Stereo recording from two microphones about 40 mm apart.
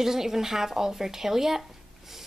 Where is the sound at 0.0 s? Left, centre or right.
Centre.